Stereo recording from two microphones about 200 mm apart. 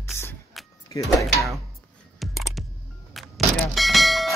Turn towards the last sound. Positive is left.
turn(degrees=0)  # may be behind; listen again after turning